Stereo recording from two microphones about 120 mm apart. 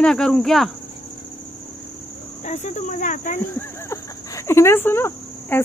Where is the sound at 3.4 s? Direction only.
20° left (ahead or behind).